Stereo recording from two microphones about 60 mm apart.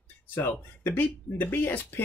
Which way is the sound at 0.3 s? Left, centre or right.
Left.